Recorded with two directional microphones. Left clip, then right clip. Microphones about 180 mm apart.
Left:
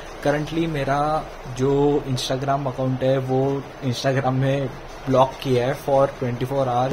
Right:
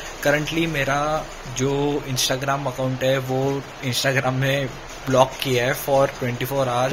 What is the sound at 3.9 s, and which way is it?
Speech, 25° left (ahead or behind).